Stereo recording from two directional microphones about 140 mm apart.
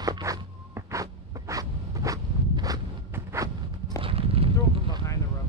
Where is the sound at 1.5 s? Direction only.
25° right (ahead or behind).